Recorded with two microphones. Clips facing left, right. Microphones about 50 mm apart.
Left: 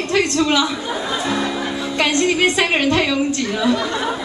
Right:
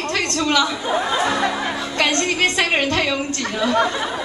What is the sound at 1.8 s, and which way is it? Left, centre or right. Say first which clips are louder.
Music: left 2 dB; centre.